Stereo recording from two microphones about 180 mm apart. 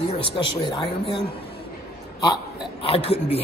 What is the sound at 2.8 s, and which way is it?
Speech, 35° left (ahead or behind).